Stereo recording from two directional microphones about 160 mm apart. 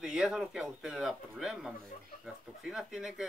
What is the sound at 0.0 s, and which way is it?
Speech, 5° right (ahead or behind).